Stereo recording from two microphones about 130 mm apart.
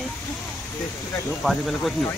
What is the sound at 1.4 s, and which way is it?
Speech, centre (ahead or behind).